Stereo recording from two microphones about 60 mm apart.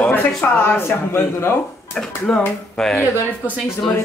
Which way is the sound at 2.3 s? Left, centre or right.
Centre.